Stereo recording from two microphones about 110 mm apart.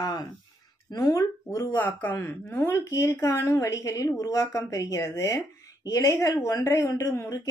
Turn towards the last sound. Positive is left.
turn(degrees=30)  # may be behind; listen again after turning